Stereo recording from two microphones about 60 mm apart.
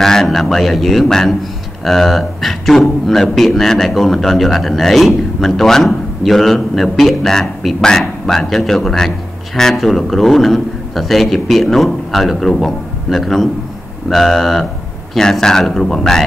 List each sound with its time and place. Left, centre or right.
0.0 s a man's voice: centre